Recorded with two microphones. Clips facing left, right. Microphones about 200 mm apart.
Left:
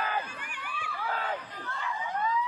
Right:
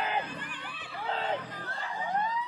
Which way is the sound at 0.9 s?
25° right (ahead or behind).